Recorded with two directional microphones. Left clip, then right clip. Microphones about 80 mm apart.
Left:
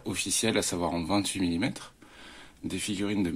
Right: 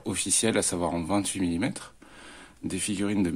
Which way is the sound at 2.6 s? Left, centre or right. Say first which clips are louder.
Right 2 dB; right.